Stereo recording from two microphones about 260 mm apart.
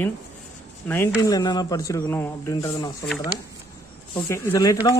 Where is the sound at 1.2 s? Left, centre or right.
Centre.